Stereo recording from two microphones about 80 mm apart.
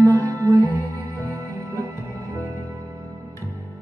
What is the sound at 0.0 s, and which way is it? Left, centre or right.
Music, left.